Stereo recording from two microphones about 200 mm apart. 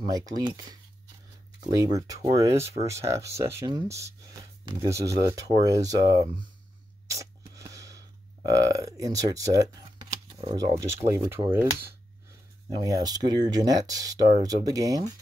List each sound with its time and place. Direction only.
0.3 s speech: 20° right (ahead or behind)
1.8 s speech: 15° right (ahead or behind)
7.1 s a sound: 15° right (ahead or behind)
8.5 s speech: 15° right (ahead or behind)
12.8 s speech: 20° right (ahead or behind)